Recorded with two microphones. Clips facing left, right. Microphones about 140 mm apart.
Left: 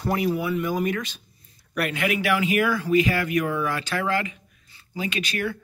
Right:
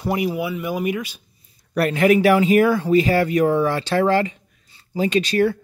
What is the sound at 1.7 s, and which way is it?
Speech, 35° right (ahead or behind).